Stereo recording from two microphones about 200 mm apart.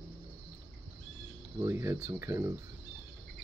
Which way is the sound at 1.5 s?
15° right (ahead or behind).